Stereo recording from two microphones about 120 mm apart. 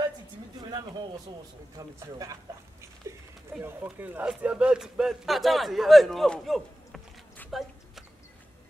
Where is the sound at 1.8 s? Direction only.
30° right (ahead or behind).